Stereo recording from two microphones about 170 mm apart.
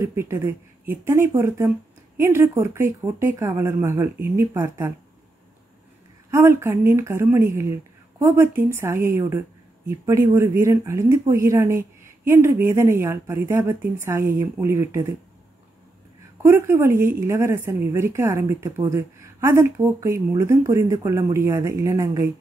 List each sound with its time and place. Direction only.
0.0 s a woman's voice: 15° right (ahead or behind)
6.3 s a woman's voice: 15° right (ahead or behind)
16.4 s a woman's voice: 15° right (ahead or behind)